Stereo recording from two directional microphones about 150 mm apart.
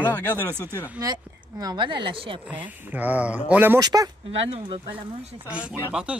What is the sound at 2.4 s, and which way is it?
Speech, 10° right (ahead or behind).